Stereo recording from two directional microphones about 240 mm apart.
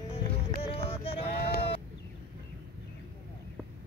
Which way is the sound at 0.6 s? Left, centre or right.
Left.